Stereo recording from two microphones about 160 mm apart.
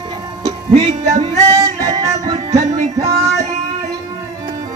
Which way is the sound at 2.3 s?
45° right (ahead or behind).